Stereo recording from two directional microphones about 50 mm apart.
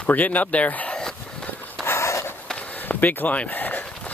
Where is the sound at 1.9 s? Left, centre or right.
Left.